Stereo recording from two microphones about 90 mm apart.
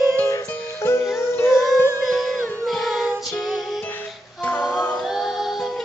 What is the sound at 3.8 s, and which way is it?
Music, 20° left (ahead or behind).